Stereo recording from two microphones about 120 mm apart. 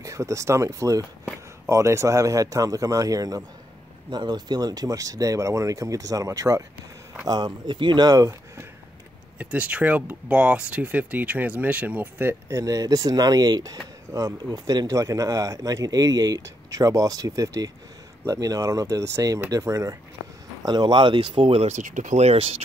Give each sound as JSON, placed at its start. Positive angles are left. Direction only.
{"t": 0.0, "sound": "speech", "side_deg": -25}
{"t": 9.4, "sound": "speech", "side_deg": -10}
{"t": 20.6, "sound": "speech", "side_deg": -35}